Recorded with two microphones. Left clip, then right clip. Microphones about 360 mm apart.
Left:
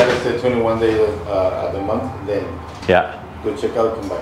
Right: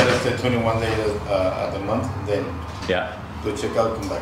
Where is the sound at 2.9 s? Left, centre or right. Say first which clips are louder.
Left 9 dB; left.